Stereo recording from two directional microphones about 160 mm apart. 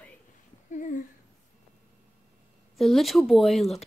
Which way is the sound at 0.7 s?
50° left (ahead or behind).